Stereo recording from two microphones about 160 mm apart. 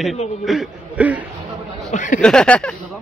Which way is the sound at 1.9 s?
55° left (ahead or behind).